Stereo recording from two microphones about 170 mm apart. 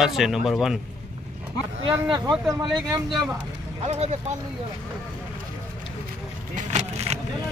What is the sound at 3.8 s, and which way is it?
Speech, 40° right (ahead or behind).